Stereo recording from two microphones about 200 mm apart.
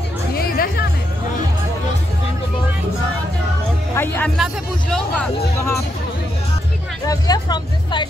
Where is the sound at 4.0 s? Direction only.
5° left (ahead or behind).